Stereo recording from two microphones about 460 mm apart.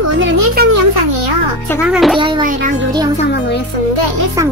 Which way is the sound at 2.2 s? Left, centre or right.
Centre.